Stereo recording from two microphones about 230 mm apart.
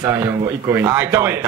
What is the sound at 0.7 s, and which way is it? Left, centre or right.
Speech, centre.